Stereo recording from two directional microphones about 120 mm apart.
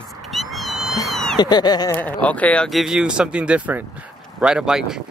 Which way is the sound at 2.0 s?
15° left (ahead or behind).